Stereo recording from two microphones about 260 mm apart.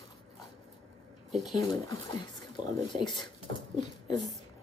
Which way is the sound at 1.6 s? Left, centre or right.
Centre.